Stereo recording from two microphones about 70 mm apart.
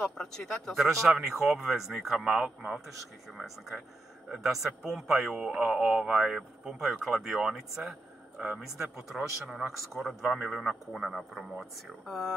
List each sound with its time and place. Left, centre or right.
0.0 s speech: centre
0.7 s a man's voice: centre
3.3 s a man's voice: centre